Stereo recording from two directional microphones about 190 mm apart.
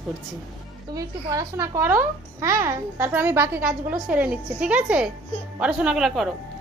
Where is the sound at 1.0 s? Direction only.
20° right (ahead or behind).